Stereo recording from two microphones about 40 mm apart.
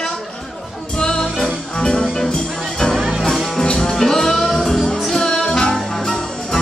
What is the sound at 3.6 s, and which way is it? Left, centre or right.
Music, centre.